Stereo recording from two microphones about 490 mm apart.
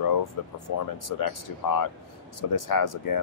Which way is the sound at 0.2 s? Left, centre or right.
Left.